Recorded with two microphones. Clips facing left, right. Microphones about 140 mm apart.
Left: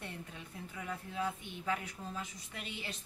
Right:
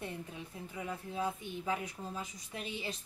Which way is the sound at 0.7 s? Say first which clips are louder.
Right 2 dB; 20° right (ahead or behind).